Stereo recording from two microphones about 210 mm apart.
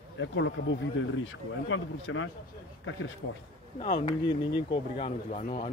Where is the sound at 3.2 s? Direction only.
80° left.